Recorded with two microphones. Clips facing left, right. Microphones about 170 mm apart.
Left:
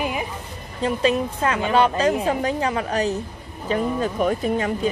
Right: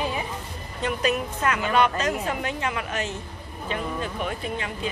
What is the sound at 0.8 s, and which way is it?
Speech, 30° left (ahead or behind).